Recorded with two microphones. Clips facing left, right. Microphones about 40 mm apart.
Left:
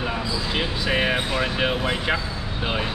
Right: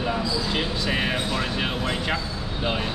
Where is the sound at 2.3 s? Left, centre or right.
Centre.